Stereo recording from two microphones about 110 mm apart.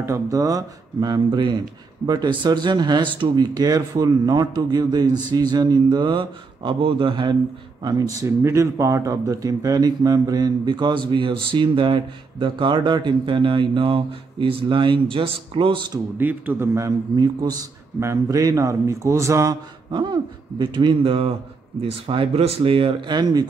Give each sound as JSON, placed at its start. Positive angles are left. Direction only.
{"t": 0.0, "sound": "speech", "side_deg": -30}
{"t": 7.8, "sound": "speech", "side_deg": -30}
{"t": 16.2, "sound": "speech", "side_deg": -15}
{"t": 17.1, "sound": "speech", "side_deg": -35}
{"t": 19.9, "sound": "speech", "side_deg": -45}